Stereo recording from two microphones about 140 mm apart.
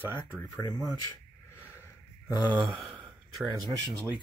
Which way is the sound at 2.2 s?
15° right (ahead or behind).